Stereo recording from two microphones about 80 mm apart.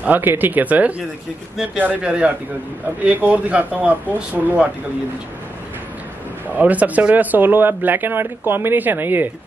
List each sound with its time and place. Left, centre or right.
0.0 s a man's voice: right
6.6 s speech: centre